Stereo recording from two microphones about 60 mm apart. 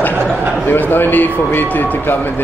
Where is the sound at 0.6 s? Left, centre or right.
Left.